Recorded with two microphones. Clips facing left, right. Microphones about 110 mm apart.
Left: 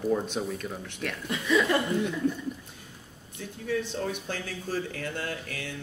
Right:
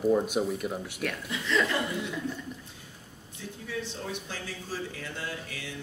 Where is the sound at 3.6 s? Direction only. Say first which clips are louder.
Left 7 dB; 55° left (ahead or behind).